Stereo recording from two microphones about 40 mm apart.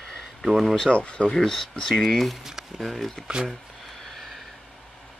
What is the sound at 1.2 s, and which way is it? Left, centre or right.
Speech, centre.